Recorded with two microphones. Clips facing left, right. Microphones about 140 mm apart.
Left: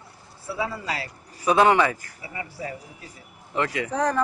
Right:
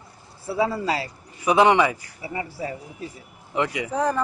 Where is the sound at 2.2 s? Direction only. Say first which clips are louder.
Right 4 dB; 25° right (ahead or behind).